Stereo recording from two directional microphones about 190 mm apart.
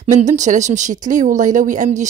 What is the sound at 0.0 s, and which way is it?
Speech, 40° right (ahead or behind).